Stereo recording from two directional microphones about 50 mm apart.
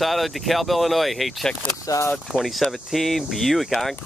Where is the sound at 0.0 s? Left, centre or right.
Centre.